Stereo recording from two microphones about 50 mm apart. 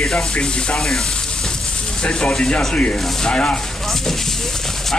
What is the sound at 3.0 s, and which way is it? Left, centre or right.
Speech, centre.